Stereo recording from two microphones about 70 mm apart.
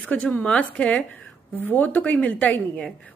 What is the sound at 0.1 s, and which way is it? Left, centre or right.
A woman's voice, left.